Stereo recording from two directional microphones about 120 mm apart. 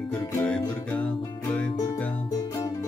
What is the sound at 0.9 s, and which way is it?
Music, 10° left (ahead or behind).